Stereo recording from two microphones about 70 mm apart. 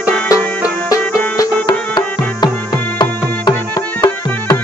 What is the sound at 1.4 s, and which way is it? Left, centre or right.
Music, left.